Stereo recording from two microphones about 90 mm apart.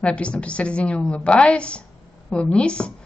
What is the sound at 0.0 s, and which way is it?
A woman's voice, 15° left (ahead or behind).